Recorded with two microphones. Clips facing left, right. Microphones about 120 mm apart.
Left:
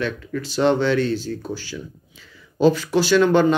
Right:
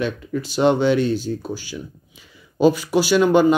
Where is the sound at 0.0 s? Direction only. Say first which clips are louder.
Right 2 dB; 20° right (ahead or behind).